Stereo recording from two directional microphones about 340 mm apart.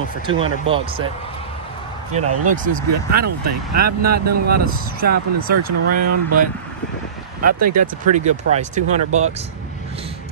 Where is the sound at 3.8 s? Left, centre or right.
Right.